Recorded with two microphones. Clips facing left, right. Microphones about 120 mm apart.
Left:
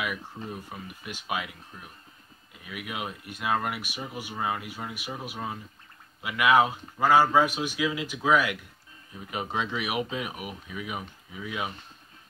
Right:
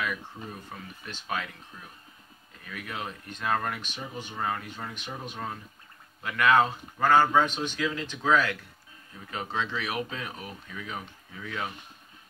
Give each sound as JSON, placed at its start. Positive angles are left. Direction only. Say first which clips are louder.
{"t": 0.0, "sound": "speech", "louder": "even", "side_deg": 10}